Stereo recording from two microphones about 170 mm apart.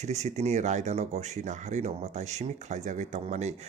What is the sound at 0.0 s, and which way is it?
Speech, 40° right (ahead or behind).